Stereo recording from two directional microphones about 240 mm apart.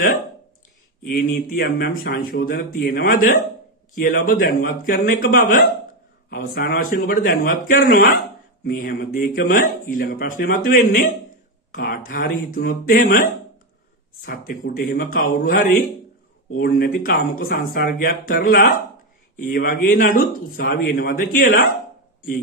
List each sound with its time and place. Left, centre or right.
1.3 s speech: left